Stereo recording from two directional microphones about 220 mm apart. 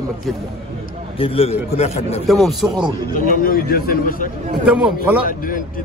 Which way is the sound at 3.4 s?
40° left (ahead or behind).